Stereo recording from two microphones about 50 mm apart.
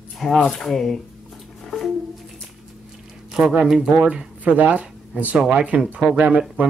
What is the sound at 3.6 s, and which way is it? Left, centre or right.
Speech, centre.